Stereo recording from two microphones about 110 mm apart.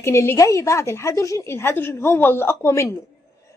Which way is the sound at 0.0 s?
25° left (ahead or behind).